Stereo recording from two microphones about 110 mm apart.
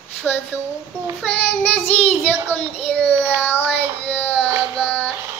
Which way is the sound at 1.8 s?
70° left (ahead or behind).